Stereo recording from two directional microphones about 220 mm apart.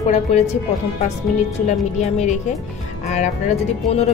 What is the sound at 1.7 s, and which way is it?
A woman's voice, 30° left (ahead or behind).